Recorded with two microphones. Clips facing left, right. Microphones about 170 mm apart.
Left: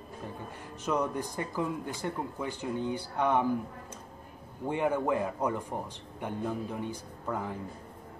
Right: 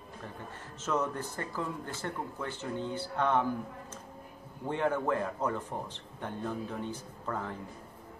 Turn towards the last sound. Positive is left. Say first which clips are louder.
# left 2 dB
turn(degrees=10)  # may be behind; listen again after turning